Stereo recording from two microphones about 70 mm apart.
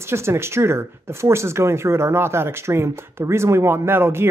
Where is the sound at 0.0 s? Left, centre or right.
Right.